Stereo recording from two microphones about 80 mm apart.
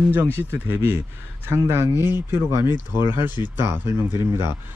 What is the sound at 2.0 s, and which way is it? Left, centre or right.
Speech, left.